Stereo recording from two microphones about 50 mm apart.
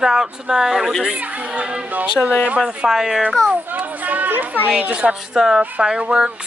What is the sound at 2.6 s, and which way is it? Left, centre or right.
Speech, centre.